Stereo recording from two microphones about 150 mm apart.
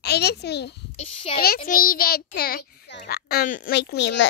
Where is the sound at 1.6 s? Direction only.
70° left (ahead or behind).